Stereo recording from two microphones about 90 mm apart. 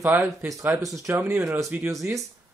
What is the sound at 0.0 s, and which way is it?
Speech, 20° right (ahead or behind).